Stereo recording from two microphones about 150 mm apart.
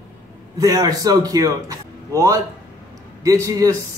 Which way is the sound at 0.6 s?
25° right (ahead or behind).